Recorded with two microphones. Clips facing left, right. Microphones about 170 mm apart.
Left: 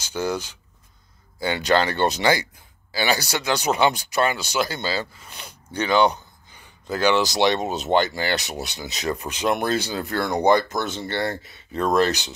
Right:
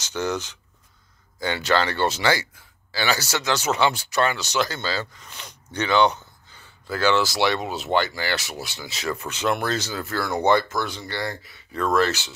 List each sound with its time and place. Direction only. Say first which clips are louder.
0.0 s speech: left 1 dB; 10° left (ahead or behind)